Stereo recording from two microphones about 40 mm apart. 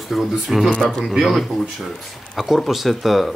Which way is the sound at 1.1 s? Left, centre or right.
Centre.